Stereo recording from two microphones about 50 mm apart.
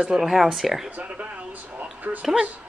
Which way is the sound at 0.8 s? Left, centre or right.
Right.